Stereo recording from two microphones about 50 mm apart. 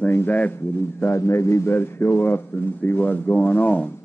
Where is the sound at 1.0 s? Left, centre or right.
Left.